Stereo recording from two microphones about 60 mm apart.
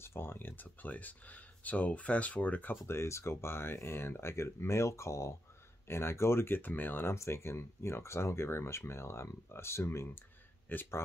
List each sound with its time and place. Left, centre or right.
0.0 s speech: left
2.9 s speech: left
7.2 s speech: left
10.7 s speech: left